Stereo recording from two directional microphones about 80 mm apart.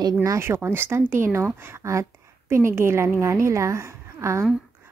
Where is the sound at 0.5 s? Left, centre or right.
Right.